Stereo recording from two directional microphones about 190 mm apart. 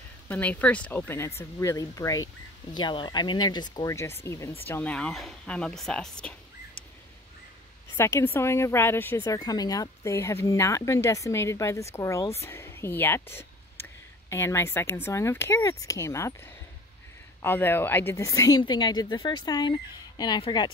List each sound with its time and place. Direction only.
0.3 s a woman's voice: 10° left (ahead or behind)
7.9 s a woman's voice: 15° left (ahead or behind)
17.4 s a woman's voice: 10° left (ahead or behind)